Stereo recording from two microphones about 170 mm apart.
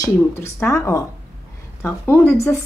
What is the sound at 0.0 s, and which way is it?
Speech, 15° left (ahead or behind).